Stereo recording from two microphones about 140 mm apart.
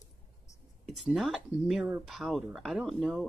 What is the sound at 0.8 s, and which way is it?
Speech, centre (ahead or behind).